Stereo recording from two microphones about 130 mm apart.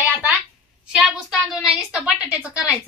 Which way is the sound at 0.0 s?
15° right (ahead or behind).